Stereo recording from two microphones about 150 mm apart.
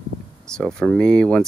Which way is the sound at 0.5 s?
5° left (ahead or behind).